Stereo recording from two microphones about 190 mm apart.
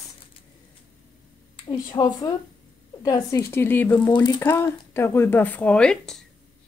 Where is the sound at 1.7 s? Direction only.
20° left (ahead or behind).